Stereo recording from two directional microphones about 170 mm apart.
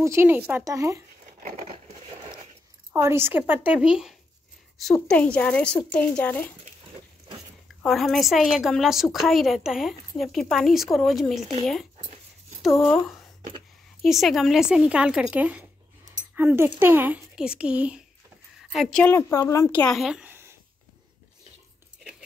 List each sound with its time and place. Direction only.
0.0 s a woman's voice: 15° right (ahead or behind)
2.9 s a woman's voice: 15° right (ahead or behind)
5.0 s a woman's voice: 10° left (ahead or behind)
7.8 s a woman's voice: centre (ahead or behind)
19.1 s speech: 15° left (ahead or behind); by 20.5 s 10° right (ahead or behind)